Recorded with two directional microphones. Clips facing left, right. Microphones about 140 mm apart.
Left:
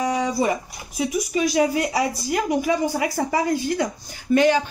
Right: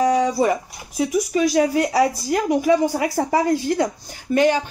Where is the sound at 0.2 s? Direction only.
45° right (ahead or behind).